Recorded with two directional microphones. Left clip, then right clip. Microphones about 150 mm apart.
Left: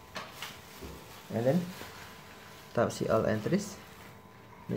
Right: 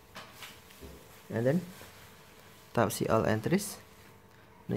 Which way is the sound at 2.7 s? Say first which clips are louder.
Even; 45° right (ahead or behind).